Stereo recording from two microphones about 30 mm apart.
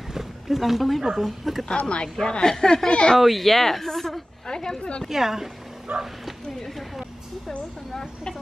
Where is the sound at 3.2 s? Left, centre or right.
Centre.